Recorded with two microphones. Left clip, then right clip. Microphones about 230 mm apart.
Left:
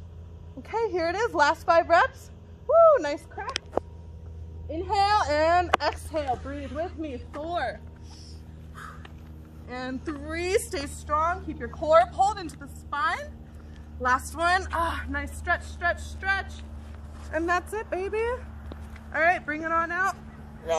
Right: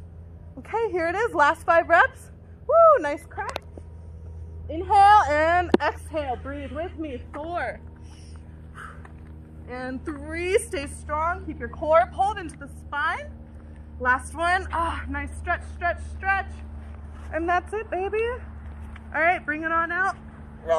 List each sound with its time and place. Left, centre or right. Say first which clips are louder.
0.6 s a woman's voice: right 2 dB; centre
4.7 s a woman's voice: right 8 dB; centre
9.7 s a woman's voice: right 1 dB; centre